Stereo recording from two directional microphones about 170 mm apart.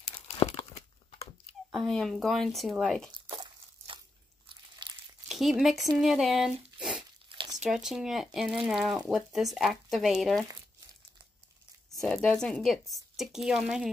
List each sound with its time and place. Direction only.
0.3 s crumpling: 40° left (ahead or behind)
1.9 s speech: centre (ahead or behind)
4.5 s a sound: 25° right (ahead or behind)
5.3 s speech: centre (ahead or behind)
7.2 s a sound: 25° right (ahead or behind)
7.7 s speech: centre (ahead or behind)
11.9 s speech: centre (ahead or behind)